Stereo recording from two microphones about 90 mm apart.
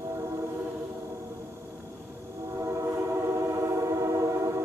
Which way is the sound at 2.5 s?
35° right (ahead or behind).